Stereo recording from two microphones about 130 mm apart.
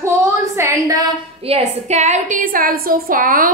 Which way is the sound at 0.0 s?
20° right (ahead or behind).